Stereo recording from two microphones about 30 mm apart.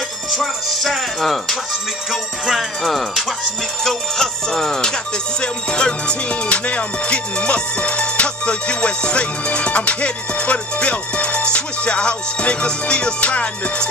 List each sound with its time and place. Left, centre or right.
0.4 s speech: centre
4.2 s music: centre
5.4 s music: left